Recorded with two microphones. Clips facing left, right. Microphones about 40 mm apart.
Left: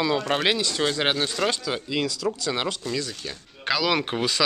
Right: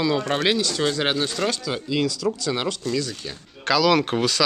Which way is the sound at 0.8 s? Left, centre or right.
Centre.